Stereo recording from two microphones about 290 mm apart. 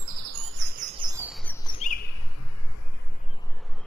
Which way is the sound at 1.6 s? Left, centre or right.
Left.